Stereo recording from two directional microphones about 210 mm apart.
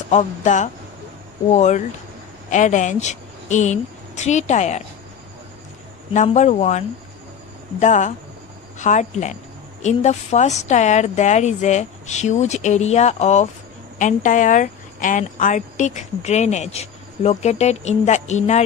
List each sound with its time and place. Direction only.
0.1 s a woman's voice: 35° left (ahead or behind)
6.1 s a woman's voice: 35° left (ahead or behind)
7.8 s a woman's voice: 35° left (ahead or behind)